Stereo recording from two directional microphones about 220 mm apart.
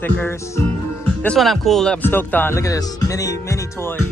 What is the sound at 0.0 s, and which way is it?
Speech, 10° left (ahead or behind).